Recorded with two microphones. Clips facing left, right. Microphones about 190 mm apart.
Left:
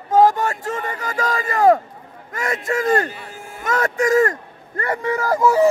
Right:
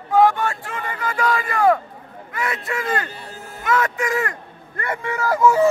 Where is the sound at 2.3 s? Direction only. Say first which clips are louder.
Left 3 dB; 45° left (ahead or behind).